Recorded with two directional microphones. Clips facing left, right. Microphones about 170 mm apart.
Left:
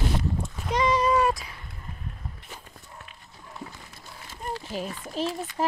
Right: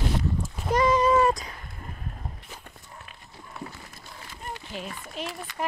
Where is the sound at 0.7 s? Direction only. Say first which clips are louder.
Right 2 dB; 5° right (ahead or behind).